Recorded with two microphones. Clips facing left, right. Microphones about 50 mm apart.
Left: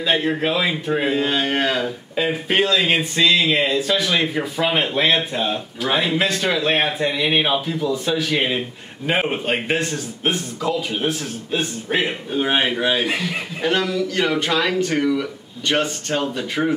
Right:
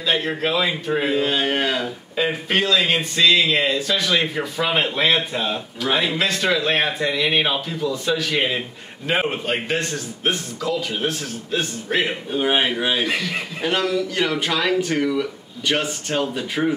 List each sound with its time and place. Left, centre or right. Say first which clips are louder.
0.0 s speech: left 2 dB; centre
0.4 s speech: left 1 dB; centre
2.5 s speech: left 2 dB; centre
12.3 s speech: even; centre